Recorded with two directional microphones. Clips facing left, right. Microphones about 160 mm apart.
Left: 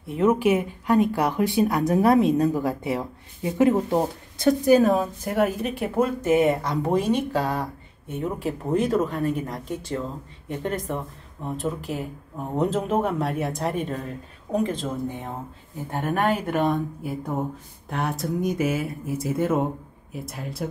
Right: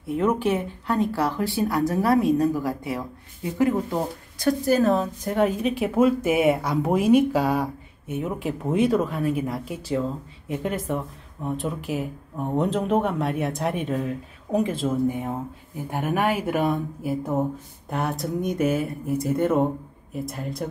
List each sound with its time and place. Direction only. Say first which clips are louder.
0.0 s speech: left 2 dB; centre (ahead or behind)